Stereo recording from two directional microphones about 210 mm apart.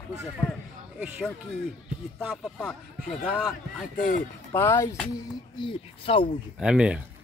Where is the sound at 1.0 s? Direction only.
Centre (ahead or behind).